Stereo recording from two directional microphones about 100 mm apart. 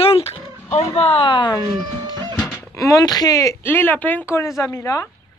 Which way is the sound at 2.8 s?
35° left (ahead or behind).